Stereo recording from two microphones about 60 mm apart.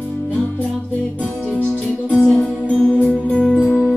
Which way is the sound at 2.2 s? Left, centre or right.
Centre.